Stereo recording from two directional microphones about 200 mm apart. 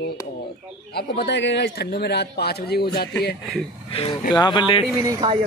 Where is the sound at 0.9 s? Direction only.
55° left (ahead or behind).